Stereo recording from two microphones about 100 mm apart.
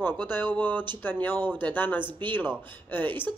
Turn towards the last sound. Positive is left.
turn(degrees=20)  # may be behind; listen again after turning